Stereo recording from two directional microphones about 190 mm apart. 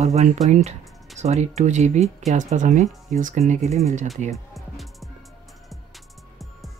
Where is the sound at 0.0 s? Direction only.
35° right (ahead or behind).